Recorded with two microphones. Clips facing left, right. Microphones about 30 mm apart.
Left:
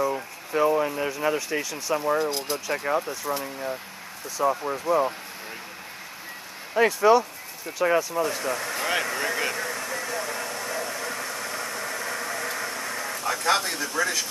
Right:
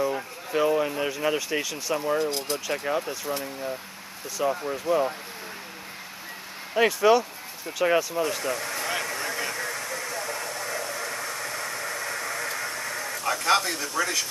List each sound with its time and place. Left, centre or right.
0.0 s a man's voice: centre
4.4 s speech: right
4.7 s a man's voice: centre
6.9 s a man's voice: centre
8.5 s a sound: centre
13.3 s a man's voice: centre